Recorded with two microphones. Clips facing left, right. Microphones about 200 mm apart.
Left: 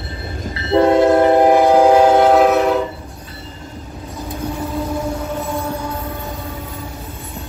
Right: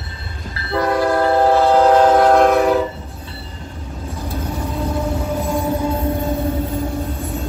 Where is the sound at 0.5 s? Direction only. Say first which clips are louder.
Left 6 dB; 25° left (ahead or behind); by 2.8 s centre (ahead or behind).